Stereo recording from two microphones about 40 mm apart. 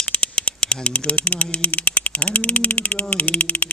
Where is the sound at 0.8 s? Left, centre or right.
Left.